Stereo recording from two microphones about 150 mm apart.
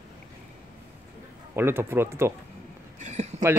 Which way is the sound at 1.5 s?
15° right (ahead or behind).